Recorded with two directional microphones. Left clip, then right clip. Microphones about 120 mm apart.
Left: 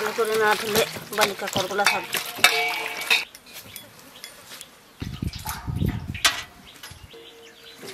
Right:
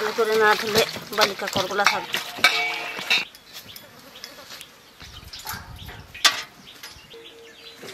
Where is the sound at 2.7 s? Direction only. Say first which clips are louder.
Left 1 dB; 20° left (ahead or behind).